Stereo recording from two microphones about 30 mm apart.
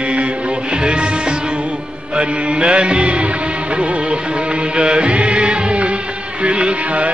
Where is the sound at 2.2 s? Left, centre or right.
Right.